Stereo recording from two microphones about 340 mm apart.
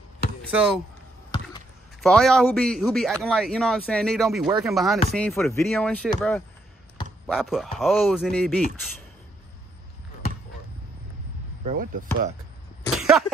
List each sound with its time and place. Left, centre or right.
0.4 s speech: centre
2.0 s a man's voice: centre
11.6 s speech: right
12.8 s cough: centre